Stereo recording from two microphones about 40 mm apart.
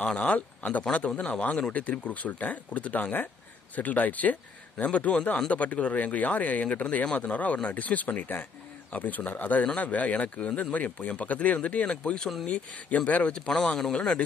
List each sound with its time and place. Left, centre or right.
0.0 s speech: left